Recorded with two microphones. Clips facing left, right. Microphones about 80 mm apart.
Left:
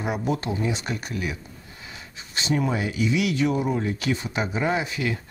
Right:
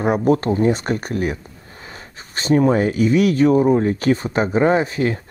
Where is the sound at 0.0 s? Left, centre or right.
Right.